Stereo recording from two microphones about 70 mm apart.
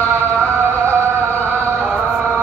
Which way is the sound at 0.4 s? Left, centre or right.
Right.